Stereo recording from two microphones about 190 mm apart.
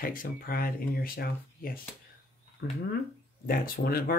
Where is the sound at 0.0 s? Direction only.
50° left (ahead or behind).